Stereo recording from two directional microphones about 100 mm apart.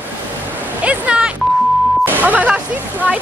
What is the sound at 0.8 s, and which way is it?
Telephone dialing, 10° right (ahead or behind).